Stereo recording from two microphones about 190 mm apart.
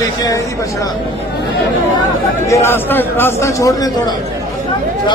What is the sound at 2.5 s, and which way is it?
A man's voice, 10° left (ahead or behind).